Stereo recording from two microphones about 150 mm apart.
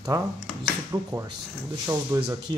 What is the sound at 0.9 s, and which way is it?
Speech, 20° right (ahead or behind).